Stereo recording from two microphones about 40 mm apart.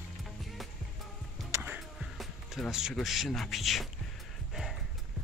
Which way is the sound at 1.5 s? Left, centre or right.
Right.